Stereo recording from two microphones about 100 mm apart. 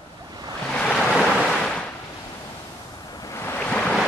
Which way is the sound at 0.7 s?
5° left (ahead or behind).